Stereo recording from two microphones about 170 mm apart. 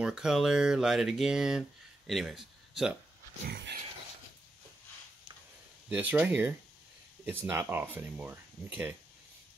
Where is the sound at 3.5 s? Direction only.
85° right.